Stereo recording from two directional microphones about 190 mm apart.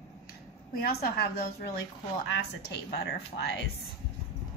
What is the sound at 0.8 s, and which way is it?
A woman's voice, 55° left (ahead or behind).